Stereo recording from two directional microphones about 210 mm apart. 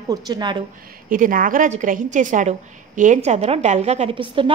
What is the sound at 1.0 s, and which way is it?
A woman's voice, 40° right (ahead or behind).